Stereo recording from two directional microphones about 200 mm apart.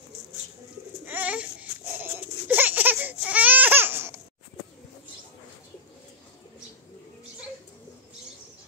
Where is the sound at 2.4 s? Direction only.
10° right (ahead or behind).